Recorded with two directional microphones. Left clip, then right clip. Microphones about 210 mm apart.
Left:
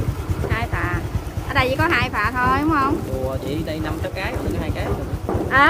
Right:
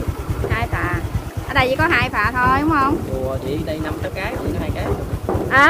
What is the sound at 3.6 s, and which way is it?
Speech, 40° left (ahead or behind).